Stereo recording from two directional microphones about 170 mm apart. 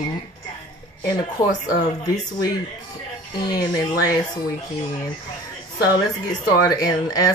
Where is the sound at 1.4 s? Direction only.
20° left (ahead or behind).